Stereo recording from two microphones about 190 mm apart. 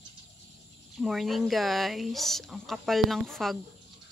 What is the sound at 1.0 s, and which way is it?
Speech, centre (ahead or behind).